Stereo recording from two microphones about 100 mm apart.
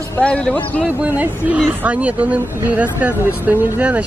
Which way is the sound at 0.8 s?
20° right (ahead or behind).